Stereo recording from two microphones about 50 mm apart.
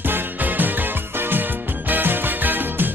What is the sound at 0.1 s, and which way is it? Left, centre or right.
Music, right.